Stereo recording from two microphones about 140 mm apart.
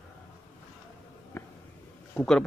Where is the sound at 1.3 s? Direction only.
15° left (ahead or behind).